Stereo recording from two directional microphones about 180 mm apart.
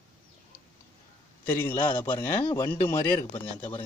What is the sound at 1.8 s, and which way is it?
Speech, 25° left (ahead or behind).